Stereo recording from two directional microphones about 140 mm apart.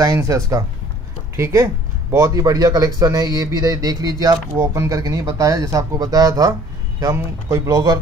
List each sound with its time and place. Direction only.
0.0 s speech: 25° right (ahead or behind)